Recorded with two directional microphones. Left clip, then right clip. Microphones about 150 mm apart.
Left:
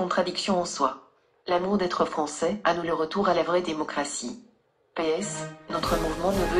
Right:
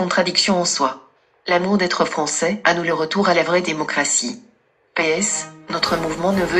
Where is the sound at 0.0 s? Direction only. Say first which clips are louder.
Right 8 dB; 20° right (ahead or behind).